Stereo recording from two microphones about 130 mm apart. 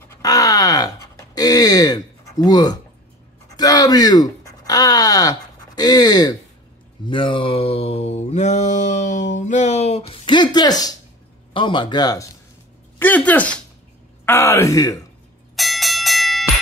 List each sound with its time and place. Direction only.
0.1 s groan: 25° left (ahead or behind)
1.3 s speech: 30° left (ahead or behind)
3.5 s a sound: 30° left (ahead or behind)
5.8 s speech: 30° left (ahead or behind)
7.1 s mantra: 40° left (ahead or behind)
11.5 s speech: 40° left (ahead or behind)
13.0 s speech: 15° left (ahead or behind)
15.5 s bell: centre (ahead or behind)